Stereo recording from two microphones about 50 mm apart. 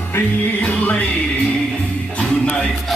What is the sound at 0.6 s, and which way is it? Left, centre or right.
Music, left.